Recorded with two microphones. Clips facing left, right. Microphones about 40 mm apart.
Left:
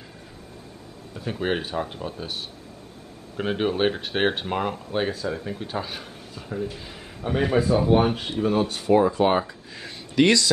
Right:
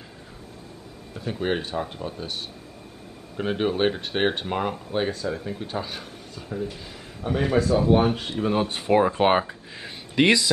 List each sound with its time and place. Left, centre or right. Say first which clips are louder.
1.2 s speech: even; centre
3.3 s speech: even; centre
8.4 s speech: left 2 dB; centre
8.6 s speech: even; right
9.8 s speech: left 1 dB; centre